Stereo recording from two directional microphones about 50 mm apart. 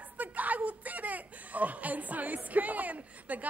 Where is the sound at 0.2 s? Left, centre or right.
Right.